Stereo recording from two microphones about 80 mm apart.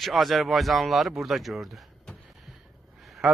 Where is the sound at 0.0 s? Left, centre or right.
Centre.